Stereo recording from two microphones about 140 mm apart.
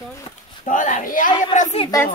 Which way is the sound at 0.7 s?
65° left (ahead or behind).